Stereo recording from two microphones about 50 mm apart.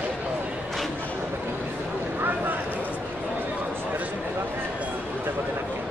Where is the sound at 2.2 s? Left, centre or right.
Right.